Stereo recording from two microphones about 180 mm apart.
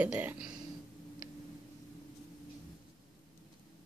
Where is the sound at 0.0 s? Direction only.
10° right (ahead or behind).